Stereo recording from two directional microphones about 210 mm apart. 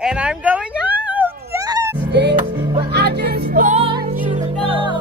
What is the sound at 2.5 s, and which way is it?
Music, 25° right (ahead or behind).